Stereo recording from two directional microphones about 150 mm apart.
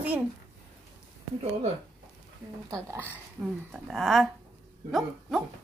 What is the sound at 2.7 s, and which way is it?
Speech, 15° right (ahead or behind).